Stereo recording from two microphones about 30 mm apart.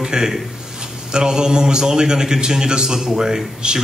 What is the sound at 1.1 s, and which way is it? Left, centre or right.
A man's voice, right.